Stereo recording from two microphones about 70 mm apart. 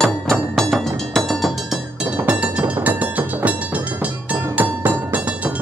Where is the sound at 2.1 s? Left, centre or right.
Centre.